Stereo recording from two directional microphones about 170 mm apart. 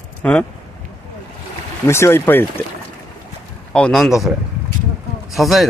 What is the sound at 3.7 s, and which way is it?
Speech, 5° left (ahead or behind).